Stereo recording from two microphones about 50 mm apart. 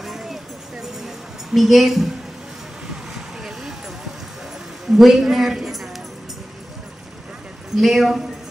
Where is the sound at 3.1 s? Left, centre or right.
Centre.